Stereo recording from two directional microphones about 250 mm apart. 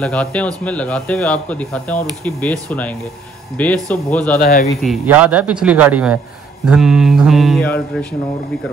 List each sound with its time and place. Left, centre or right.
0.0 s speech: centre
4.4 s speech: left
4.8 s speech: centre